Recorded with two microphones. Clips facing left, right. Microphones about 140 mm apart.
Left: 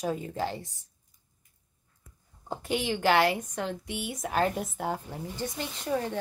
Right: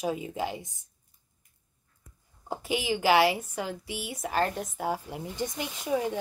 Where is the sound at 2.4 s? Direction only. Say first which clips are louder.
Even; 5° right (ahead or behind).